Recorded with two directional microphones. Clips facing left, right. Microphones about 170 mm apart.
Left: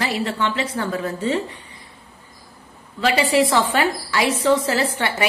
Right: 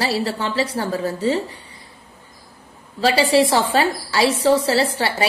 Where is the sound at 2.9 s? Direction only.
30° right (ahead or behind).